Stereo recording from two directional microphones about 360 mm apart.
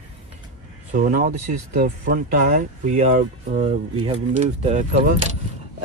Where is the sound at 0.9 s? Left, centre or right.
Right.